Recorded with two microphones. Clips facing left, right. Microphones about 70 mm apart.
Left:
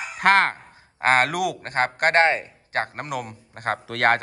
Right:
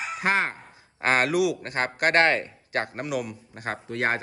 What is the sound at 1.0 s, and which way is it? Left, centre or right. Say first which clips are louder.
Speech: left 2 dB; left.